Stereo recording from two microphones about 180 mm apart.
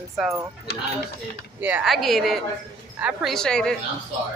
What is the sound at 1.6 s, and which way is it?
Speech, 10° right (ahead or behind).